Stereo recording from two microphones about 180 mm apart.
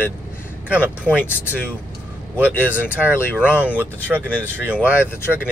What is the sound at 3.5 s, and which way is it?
Speech, 10° right (ahead or behind).